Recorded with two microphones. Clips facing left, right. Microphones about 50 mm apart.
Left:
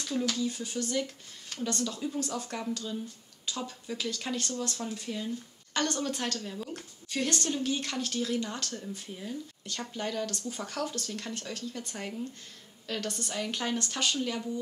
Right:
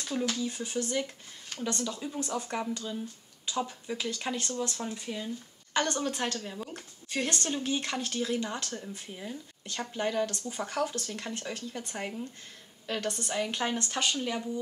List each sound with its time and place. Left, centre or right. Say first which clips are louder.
0.0 s a woman's voice: left 1 dB; centre